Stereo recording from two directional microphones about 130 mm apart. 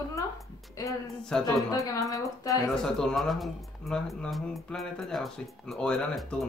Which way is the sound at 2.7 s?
5° left (ahead or behind).